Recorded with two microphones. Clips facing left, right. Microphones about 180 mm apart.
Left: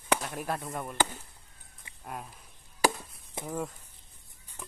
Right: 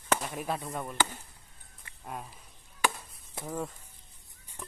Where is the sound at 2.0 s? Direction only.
Centre (ahead or behind).